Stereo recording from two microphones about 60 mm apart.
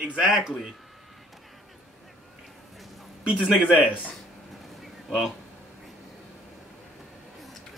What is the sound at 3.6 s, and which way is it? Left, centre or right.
Speech, centre.